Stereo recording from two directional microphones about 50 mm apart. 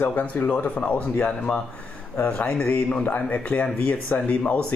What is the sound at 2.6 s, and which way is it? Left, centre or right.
A man's voice, left.